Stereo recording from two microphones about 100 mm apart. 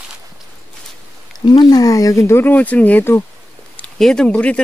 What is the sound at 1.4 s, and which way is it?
Speech, 45° left (ahead or behind).